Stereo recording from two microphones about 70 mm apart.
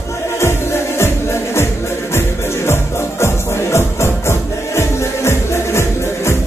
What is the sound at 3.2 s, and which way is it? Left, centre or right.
Music, left.